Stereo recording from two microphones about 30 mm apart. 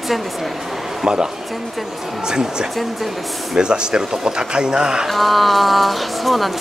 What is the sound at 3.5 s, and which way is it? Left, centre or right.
Speech, right.